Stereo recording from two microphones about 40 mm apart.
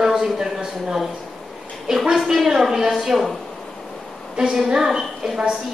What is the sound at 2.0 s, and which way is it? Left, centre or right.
A woman's voice, centre.